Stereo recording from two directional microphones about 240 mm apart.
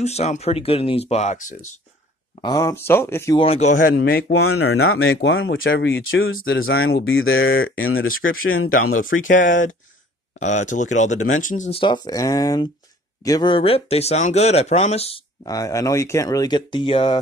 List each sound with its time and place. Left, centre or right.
0.0 s speech: left
2.4 s speech: centre
3.4 s speech: left
4.3 s speech: left
9.4 s speech: left